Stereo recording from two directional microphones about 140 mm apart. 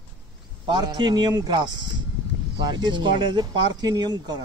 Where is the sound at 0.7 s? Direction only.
30° right (ahead or behind).